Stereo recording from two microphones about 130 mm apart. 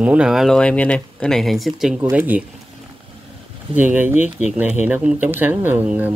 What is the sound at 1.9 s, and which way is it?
Speech, 15° right (ahead or behind).